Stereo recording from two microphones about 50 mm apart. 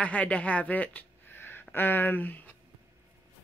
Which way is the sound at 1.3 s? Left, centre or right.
Left.